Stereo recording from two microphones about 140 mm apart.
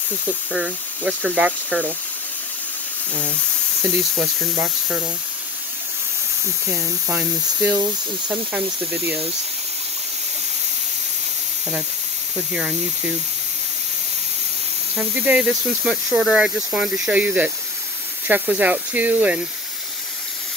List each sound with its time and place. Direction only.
0.5 s speech: 10° right (ahead or behind)
4.2 s speech: 5° right (ahead or behind)
7.2 s speech: 10° right (ahead or behind)
15.0 s speech: 10° right (ahead or behind)